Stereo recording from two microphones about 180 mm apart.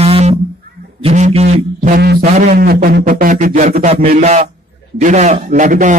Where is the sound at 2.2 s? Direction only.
40° right (ahead or behind).